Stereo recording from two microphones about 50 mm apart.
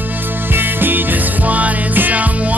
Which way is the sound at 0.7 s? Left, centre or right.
Right.